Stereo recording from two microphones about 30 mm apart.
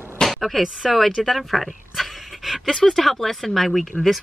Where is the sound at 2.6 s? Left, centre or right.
Centre.